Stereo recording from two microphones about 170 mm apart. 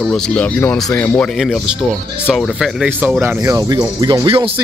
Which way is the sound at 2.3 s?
5° right (ahead or behind).